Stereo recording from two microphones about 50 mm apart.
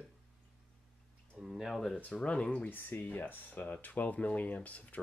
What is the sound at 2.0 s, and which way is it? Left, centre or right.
Speech, left.